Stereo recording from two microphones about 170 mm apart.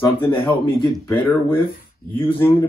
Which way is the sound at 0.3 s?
30° left (ahead or behind).